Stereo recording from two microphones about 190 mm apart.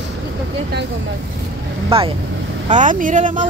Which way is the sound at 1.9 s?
30° right (ahead or behind).